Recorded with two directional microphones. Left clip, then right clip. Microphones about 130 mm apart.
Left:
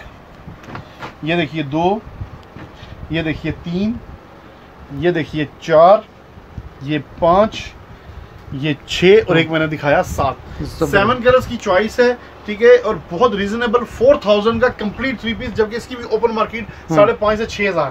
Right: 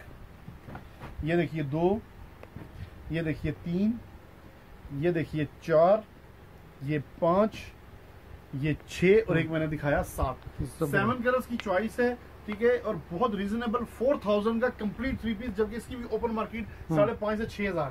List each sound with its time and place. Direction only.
1.2 s speech: 20° right (ahead or behind)
3.1 s speech: 20° right (ahead or behind)
5.0 s speech: 10° right (ahead or behind); by 7.6 s 30° right (ahead or behind)
8.5 s a man's voice: centre (ahead or behind)